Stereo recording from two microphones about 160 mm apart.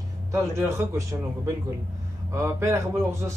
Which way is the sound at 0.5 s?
15° right (ahead or behind).